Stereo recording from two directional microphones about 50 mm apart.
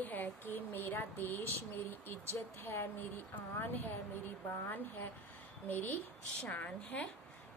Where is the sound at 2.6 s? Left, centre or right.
Left.